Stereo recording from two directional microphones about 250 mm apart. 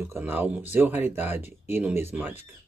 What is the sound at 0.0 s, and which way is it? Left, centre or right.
Speech, centre.